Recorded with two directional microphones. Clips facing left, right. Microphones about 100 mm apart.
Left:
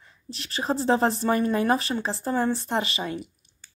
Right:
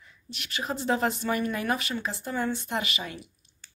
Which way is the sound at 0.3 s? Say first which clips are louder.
Left 5 dB; 35° left (ahead or behind).